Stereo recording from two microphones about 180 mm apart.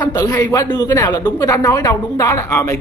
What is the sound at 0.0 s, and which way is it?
A man's voice, 20° left (ahead or behind).